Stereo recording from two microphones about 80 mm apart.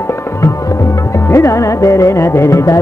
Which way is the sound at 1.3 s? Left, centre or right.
Left.